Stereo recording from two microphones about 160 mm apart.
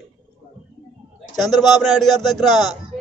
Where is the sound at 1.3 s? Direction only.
Centre (ahead or behind).